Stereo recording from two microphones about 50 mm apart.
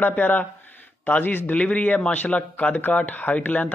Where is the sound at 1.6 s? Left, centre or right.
Left.